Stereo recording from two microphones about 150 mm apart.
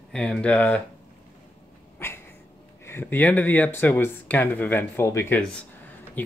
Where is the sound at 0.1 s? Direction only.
5° left (ahead or behind).